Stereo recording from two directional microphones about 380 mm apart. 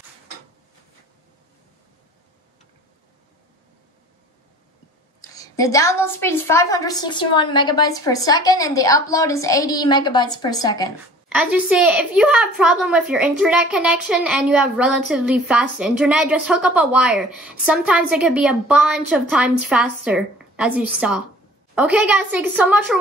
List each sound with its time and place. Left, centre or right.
5.4 s a woman's voice: centre
11.2 s a woman's voice: centre
20.3 s a sound: centre
21.0 s a woman's voice: centre